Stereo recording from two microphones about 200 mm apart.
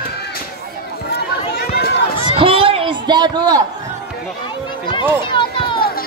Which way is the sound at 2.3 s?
25° right (ahead or behind).